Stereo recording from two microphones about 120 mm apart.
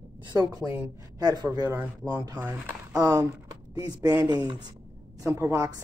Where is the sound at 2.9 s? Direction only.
35° right (ahead or behind).